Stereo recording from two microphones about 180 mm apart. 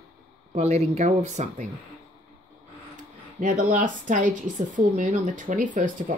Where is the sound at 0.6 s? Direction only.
35° right (ahead or behind).